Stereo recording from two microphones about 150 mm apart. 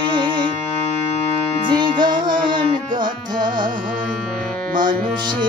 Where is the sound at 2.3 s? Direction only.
70° right (ahead or behind).